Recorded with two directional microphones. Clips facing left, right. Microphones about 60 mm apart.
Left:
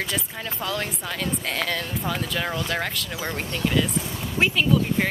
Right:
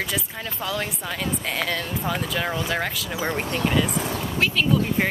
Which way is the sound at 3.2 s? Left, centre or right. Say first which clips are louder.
Right 3 dB; centre.